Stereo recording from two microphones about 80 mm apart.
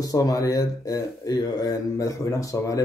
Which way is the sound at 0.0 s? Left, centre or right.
Left.